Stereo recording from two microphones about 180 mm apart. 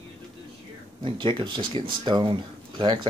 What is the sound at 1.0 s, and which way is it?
Speech, 25° right (ahead or behind).